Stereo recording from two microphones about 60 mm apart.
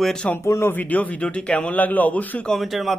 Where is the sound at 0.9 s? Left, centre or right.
Left.